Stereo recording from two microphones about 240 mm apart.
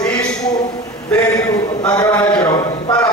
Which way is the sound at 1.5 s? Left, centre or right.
Centre.